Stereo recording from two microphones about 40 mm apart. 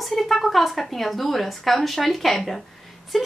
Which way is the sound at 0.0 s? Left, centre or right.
Centre.